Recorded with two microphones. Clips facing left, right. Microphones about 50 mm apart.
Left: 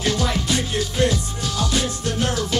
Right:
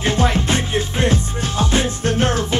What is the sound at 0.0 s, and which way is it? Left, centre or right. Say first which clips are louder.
Music: right 4 dB; right.